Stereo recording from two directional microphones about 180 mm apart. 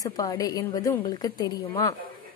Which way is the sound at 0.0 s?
20° left (ahead or behind).